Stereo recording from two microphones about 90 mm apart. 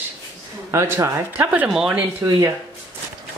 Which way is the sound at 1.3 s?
15° right (ahead or behind).